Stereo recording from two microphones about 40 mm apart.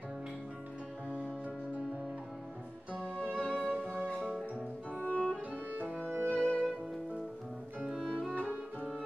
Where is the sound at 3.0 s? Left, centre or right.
Left.